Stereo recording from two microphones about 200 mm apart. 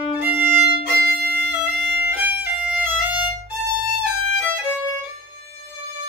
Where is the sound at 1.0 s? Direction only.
50° right (ahead or behind).